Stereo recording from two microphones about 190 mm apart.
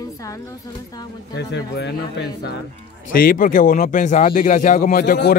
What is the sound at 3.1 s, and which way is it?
Speech, 50° left (ahead or behind).